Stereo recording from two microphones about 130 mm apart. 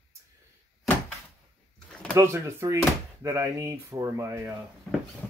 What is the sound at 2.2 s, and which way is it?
Speech, 20° right (ahead or behind).